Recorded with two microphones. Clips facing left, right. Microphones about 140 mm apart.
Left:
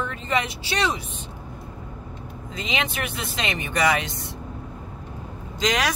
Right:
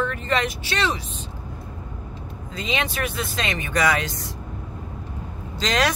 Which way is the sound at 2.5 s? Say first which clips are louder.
Right 1 dB; 20° left (ahead or behind).